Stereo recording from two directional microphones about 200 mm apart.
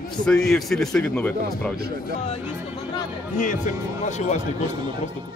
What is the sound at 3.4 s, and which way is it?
Speech, 40° left (ahead or behind).